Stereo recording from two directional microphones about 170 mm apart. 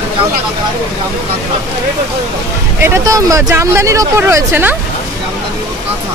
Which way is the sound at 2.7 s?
15° right (ahead or behind).